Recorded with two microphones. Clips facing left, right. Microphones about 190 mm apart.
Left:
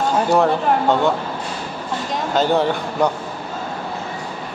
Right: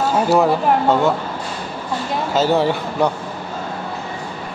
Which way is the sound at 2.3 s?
5° right (ahead or behind).